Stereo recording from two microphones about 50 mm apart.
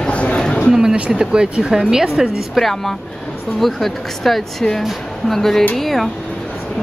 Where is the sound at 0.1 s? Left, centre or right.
Left.